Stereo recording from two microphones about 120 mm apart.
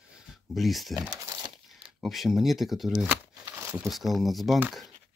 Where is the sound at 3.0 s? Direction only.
15° right (ahead or behind).